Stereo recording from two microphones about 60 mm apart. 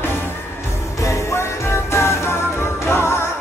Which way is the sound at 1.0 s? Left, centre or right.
Left.